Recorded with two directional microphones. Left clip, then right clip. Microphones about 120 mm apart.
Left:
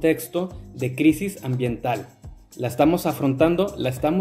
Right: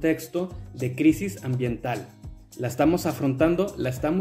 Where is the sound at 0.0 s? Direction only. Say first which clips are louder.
Left 4 dB; 20° left (ahead or behind).